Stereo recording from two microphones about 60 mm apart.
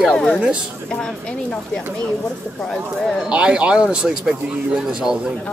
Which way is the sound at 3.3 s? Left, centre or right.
Centre.